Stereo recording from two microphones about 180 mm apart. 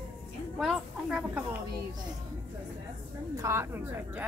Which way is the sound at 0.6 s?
5° right (ahead or behind).